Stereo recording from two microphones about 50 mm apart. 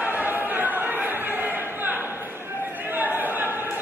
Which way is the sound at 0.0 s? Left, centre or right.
Right.